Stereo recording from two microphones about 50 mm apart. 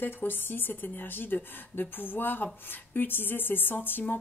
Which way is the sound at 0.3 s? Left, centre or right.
Left.